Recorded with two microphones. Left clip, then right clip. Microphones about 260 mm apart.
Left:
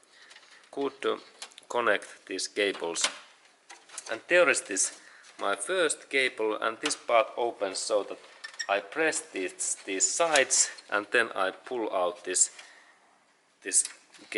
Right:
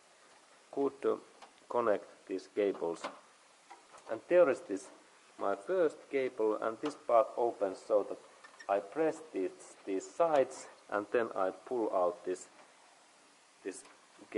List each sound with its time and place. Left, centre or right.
0.7 s speech: right
1.7 s speech: centre
4.1 s speech: centre
7.2 s speech: right
7.6 s speech: centre
7.9 s speech: right
8.6 s speech: centre
11.7 s speech: right